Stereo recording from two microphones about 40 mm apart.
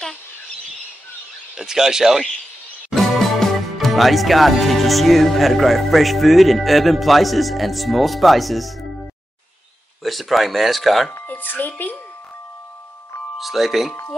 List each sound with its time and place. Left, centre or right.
1.6 s speech: centre
3.0 s speech: centre
10.0 s speech: centre
11.2 s speech: left
13.4 s speech: centre